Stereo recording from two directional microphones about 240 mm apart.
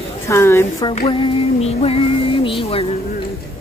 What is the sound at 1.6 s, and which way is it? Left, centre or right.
Music, left.